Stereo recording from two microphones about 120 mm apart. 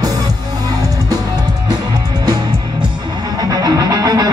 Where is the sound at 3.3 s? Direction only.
30° right (ahead or behind).